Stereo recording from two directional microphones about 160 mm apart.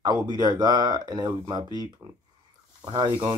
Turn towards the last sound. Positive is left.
turn(degrees=-30)  # may be behind; listen again after turning